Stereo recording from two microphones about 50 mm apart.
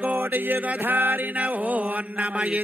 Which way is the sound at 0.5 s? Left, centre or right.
Right.